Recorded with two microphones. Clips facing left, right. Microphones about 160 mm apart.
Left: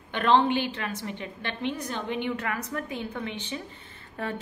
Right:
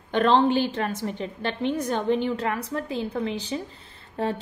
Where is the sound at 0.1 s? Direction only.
40° right (ahead or behind).